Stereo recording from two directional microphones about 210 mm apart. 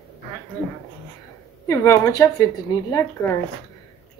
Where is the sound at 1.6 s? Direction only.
15° left (ahead or behind).